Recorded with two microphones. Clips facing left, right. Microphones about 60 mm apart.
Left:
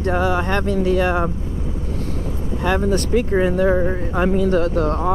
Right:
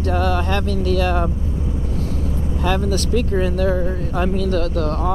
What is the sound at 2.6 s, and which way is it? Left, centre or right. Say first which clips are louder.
Speech: left 2 dB; left.